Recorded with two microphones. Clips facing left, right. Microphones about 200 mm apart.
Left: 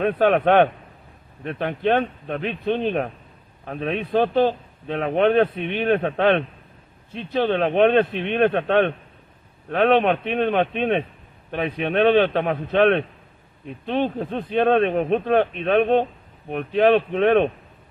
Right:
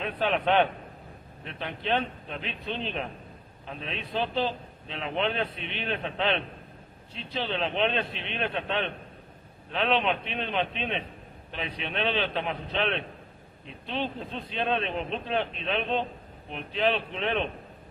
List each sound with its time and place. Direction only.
0.0 s a man's voice: 50° left (ahead or behind)